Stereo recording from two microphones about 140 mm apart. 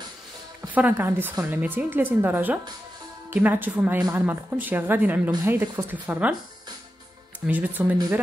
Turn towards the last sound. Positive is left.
turn(degrees=-10)  # may be behind; listen again after turning